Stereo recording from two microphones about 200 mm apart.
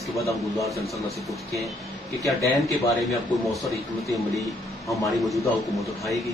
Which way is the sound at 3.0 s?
Centre (ahead or behind).